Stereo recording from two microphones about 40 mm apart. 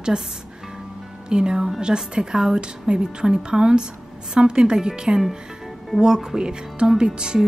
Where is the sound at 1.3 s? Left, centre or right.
Centre.